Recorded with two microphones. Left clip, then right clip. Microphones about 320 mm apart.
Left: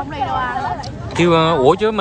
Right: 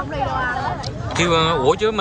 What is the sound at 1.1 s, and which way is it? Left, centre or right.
Speech, centre.